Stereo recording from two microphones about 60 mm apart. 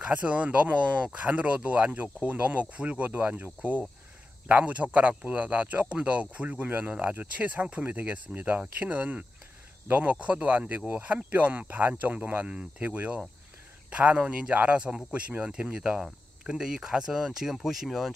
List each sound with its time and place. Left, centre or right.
0.0 s speech: right; by 18.1 s centre